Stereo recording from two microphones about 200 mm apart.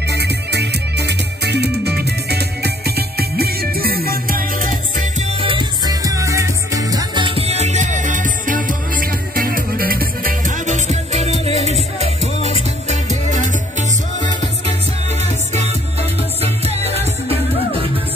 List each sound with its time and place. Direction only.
0.1 s music: 55° right (ahead or behind)
5.4 s music: 25° right (ahead or behind)
7.6 s music: 35° right (ahead or behind)
11.7 s music: 30° left (ahead or behind)